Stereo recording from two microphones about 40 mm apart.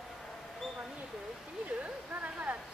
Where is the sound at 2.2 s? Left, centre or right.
Right.